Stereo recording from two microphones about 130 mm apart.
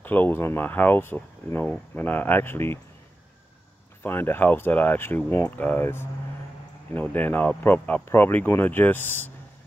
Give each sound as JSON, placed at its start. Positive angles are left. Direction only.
{"t": 0.0, "sound": "speech", "side_deg": 15}
{"t": 4.0, "sound": "speech", "side_deg": 15}